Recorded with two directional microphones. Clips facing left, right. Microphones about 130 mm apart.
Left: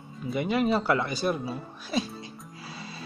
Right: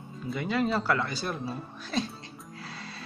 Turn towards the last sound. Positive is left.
turn(degrees=10)  # may be behind; listen again after turning